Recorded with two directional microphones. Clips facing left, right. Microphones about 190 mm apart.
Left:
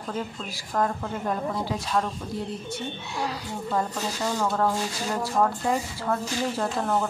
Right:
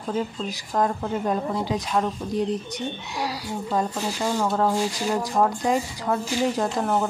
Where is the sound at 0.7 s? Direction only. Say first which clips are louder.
Right 3 dB; 20° right (ahead or behind).